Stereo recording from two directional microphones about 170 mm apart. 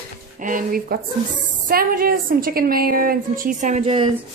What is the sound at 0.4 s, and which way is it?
A woman's voice, 55° right (ahead or behind).